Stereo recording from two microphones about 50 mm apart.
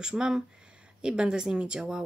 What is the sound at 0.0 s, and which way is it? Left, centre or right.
A woman's voice, centre.